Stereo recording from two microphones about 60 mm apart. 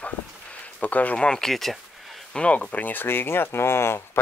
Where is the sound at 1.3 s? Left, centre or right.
Centre.